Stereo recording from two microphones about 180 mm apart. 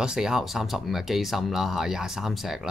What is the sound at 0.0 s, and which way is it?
Speech, 5° right (ahead or behind).